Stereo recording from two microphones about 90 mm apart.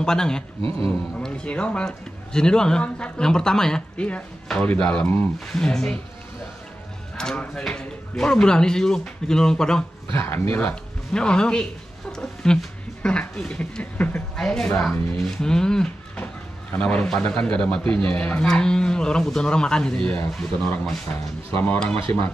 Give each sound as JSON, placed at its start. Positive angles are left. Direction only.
{"t": 0.0, "sound": "a man's voice", "side_deg": 10}
{"t": 0.6, "sound": "a man's voice", "side_deg": -90}
{"t": 1.1, "sound": "a man's voice", "side_deg": 10}
{"t": 7.2, "sound": "a man's voice", "side_deg": 10}
{"t": 10.1, "sound": "speech", "side_deg": 25}
{"t": 10.7, "sound": "speech", "side_deg": 10}
{"t": 12.1, "sound": "a sound", "side_deg": 10}
{"t": 13.0, "sound": "a man's voice", "side_deg": 10}
{"t": 14.3, "sound": "a man's voice", "side_deg": 5}